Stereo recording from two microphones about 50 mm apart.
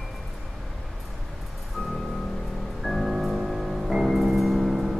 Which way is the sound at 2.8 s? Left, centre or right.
Centre.